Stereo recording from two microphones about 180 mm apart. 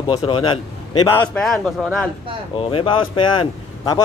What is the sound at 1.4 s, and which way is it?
Speech, centre (ahead or behind).